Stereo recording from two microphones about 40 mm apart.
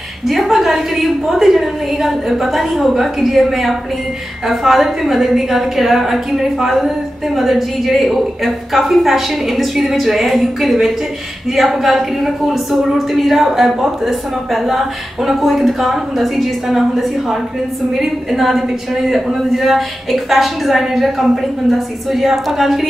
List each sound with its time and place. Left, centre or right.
0.3 s a woman's voice: centre